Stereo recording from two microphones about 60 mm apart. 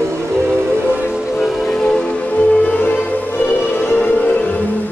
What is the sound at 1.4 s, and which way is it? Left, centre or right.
Train, centre.